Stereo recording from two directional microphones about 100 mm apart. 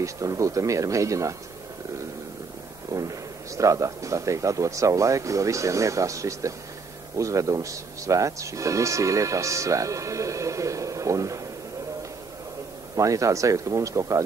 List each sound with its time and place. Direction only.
0.0 s speech: 30° right (ahead or behind)
2.9 s speech: 35° right (ahead or behind)
12.9 s speech: 35° right (ahead or behind)